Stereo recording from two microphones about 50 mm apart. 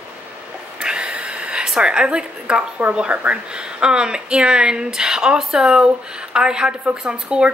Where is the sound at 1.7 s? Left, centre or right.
Centre.